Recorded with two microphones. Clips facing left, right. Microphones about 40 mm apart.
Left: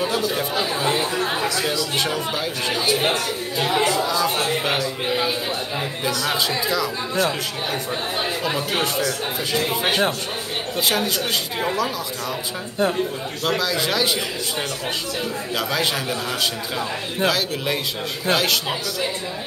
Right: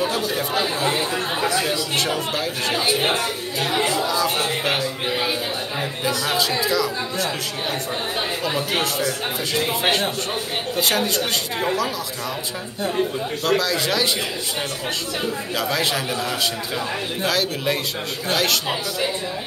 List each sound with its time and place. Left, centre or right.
0.4 s speech: centre
2.9 s speech: centre
3.5 s speech: centre
6.6 s speech: centre
13.5 s speech: centre
15.5 s speech: centre
17.3 s speech: centre